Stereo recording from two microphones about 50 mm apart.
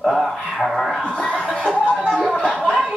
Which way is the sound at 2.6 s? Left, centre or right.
Centre.